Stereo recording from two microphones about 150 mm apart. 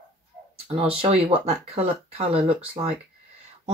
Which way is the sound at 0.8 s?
40° right (ahead or behind).